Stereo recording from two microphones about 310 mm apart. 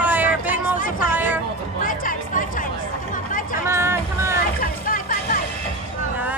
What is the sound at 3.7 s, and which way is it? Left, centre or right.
Vehicle, centre.